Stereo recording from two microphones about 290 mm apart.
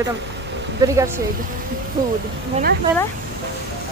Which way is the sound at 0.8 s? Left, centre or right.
Centre.